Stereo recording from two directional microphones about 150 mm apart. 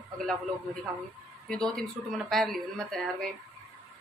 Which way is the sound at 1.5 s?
5° left (ahead or behind).